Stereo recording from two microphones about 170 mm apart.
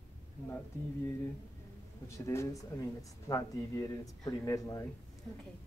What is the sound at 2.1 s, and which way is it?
Speech, 15° left (ahead or behind).